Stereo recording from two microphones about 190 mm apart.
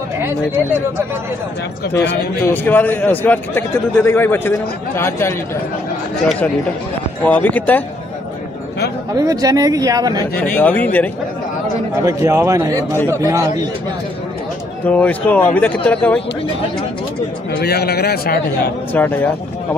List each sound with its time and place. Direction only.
0.2 s speech: 10° right (ahead or behind)
2.4 s a man's voice: 10° left (ahead or behind)
7.2 s a man's voice: 10° left (ahead or behind)
9.1 s speech: 20° right (ahead or behind)
10.3 s a man's voice: 10° left (ahead or behind)
12.0 s speech: 15° right (ahead or behind)
14.9 s a man's voice: 10° left (ahead or behind)
17.5 s a man's voice: 55° left (ahead or behind)
18.9 s a man's voice: 10° left (ahead or behind)